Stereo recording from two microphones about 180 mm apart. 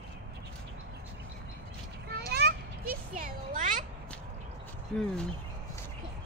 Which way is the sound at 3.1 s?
50° right (ahead or behind).